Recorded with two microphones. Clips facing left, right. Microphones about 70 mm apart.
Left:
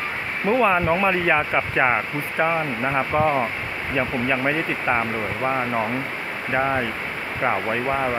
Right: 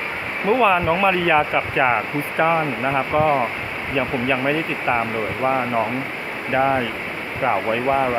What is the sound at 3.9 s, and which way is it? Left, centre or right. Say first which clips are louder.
Speech: right 2 dB; centre.